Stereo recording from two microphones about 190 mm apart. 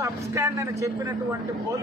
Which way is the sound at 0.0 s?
15° right (ahead or behind).